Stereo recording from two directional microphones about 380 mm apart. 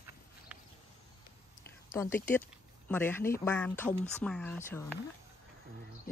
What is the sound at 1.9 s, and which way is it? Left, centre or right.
Speech, centre.